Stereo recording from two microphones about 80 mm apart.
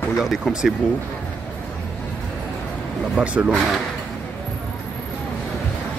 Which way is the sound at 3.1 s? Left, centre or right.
Centre.